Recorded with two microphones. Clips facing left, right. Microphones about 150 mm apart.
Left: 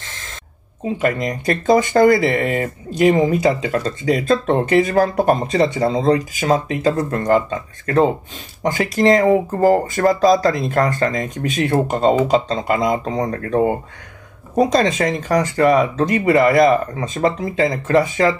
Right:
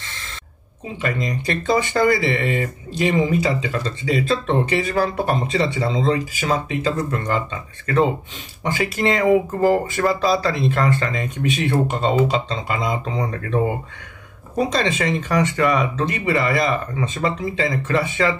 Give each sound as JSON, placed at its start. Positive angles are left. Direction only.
{"t": 1.0, "sound": "speech", "side_deg": 50}